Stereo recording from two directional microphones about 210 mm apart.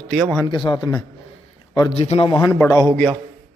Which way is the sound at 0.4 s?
20° left (ahead or behind).